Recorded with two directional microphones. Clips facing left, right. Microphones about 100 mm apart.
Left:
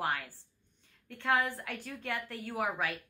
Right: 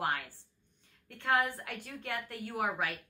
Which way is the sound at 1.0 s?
20° right (ahead or behind).